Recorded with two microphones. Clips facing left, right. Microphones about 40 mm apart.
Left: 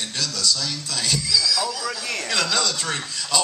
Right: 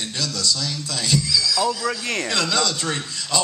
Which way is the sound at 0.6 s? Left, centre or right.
Right.